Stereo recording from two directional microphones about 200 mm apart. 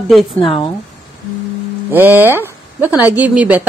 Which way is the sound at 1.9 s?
10° right (ahead or behind).